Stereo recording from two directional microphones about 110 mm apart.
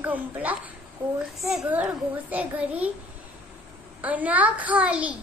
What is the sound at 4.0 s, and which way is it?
A child's voice, 15° right (ahead or behind).